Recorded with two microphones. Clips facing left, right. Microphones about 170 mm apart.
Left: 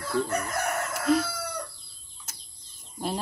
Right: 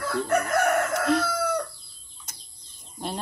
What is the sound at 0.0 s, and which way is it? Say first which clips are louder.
Chicken: right 3 dB; 55° right (ahead or behind).